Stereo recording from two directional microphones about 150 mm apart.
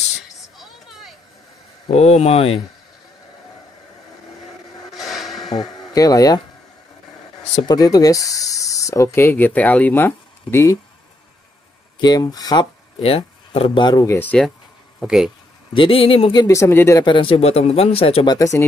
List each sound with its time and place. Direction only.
0.4 s a sound: centre (ahead or behind)
1.9 s speech: 45° left (ahead or behind)
4.9 s a sound: centre (ahead or behind)
5.5 s speech: 25° left (ahead or behind)
7.6 s speech: 25° left (ahead or behind)
12.0 s speech: 25° left (ahead or behind)
13.0 s speech: 40° left (ahead or behind)
13.8 s speech: 25° left (ahead or behind)
14.1 s speech: 10° left (ahead or behind)
15.0 s speech: centre (ahead or behind)
15.7 s speech: 35° left (ahead or behind)
16.3 s speech: 20° left (ahead or behind)
17.0 s speech: 35° left (ahead or behind)
18.3 s speech: 20° left (ahead or behind)